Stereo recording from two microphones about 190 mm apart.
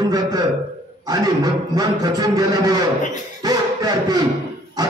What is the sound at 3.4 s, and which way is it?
Music, 20° right (ahead or behind).